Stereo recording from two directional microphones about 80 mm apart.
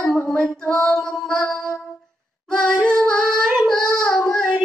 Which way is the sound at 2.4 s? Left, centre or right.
Centre.